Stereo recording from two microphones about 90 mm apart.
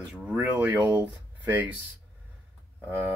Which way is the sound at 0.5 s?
20° right (ahead or behind).